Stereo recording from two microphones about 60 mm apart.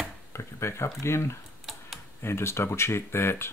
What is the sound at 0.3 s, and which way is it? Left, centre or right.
Speech, left.